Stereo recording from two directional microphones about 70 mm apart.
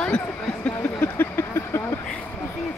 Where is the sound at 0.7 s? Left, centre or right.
Left.